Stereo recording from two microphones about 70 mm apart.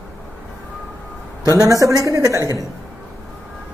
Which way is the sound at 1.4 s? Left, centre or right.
Right.